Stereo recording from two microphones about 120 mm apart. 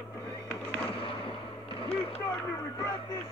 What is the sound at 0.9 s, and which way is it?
Fireworks, 50° left (ahead or behind).